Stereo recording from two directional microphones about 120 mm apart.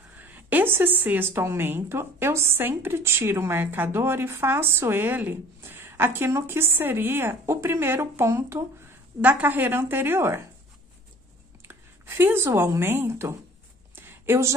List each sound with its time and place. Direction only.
0.2 s a woman's voice: 15° right (ahead or behind)
11.6 s speech: 20° right (ahead or behind)
13.9 s a sound: 20° right (ahead or behind)